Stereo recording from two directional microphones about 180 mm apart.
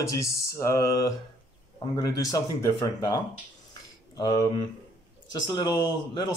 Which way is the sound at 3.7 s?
20° left (ahead or behind).